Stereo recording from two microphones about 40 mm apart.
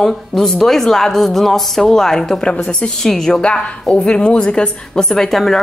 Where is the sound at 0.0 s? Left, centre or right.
Centre.